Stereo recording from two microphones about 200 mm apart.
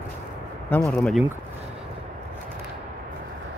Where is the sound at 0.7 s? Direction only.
10° left (ahead or behind).